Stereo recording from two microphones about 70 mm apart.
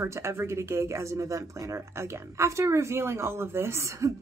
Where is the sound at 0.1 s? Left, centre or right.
Right.